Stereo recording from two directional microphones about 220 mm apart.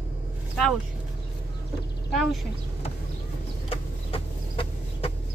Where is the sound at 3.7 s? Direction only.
25° left (ahead or behind).